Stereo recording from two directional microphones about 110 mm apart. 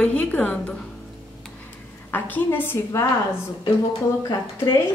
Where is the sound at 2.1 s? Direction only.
20° left (ahead or behind).